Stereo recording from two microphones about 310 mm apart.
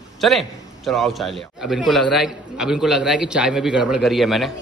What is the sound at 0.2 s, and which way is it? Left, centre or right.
A man's voice, centre.